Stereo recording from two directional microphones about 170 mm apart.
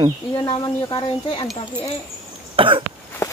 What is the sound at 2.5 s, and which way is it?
Cough, 30° right (ahead or behind).